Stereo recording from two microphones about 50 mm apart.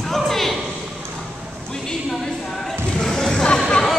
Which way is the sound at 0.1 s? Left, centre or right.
Centre.